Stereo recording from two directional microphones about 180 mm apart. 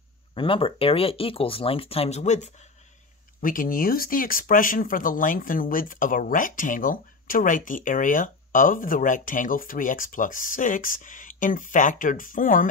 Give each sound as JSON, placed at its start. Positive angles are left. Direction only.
{"t": 0.3, "sound": "speech", "side_deg": 30}